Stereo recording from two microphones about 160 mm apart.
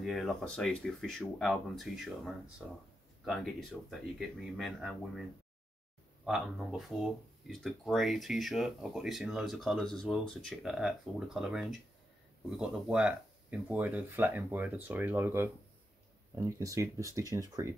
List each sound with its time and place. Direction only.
0.0 s speech: centre (ahead or behind)
6.2 s speech: centre (ahead or behind); by 17.7 s 20° right (ahead or behind)